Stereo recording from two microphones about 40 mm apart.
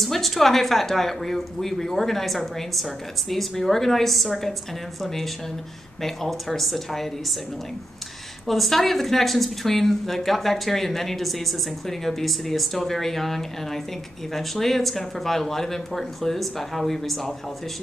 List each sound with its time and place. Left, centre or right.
0.0 s speech: centre
6.0 s speech: centre
8.5 s speech: centre